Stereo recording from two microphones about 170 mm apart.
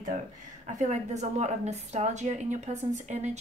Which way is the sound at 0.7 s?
45° right (ahead or behind).